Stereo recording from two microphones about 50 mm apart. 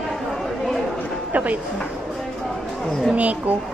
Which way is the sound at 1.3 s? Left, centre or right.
Right.